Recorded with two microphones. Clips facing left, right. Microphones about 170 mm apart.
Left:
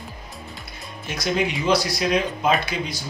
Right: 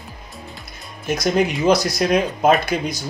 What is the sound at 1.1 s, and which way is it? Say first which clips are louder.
Speech: right 5 dB; 45° right (ahead or behind).